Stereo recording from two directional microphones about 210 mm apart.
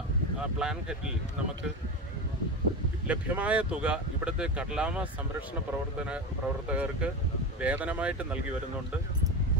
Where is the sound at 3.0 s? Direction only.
5° right (ahead or behind).